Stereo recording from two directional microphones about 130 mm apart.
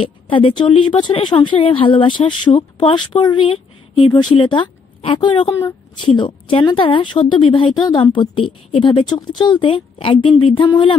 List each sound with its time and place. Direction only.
0.0 s speech: 40° left (ahead or behind)